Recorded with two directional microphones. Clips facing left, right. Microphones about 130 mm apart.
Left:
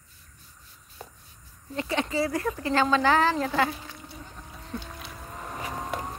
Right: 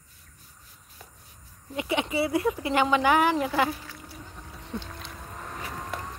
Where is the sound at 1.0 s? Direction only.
30° left (ahead or behind).